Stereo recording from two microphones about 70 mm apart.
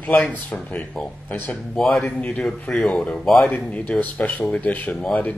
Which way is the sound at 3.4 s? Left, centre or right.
Centre.